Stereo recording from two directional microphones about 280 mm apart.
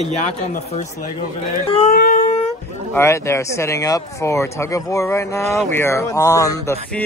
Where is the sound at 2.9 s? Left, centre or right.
Centre.